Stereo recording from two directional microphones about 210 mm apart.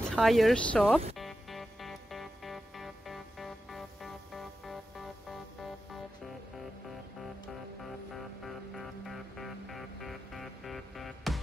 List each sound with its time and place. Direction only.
0.1 s speech: centre (ahead or behind)
1.1 s music: centre (ahead or behind)
7.8 s music: centre (ahead or behind)